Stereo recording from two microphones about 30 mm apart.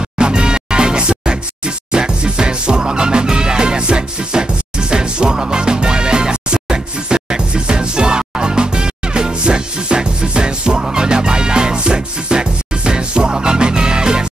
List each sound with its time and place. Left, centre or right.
0.2 s music: right